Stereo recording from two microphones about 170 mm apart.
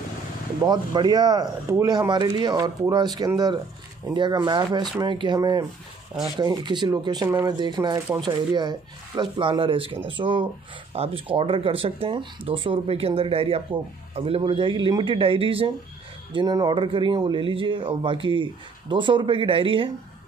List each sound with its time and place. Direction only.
0.6 s speech: 25° right (ahead or behind)